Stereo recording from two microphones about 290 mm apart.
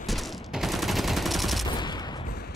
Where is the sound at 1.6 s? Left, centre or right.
Centre.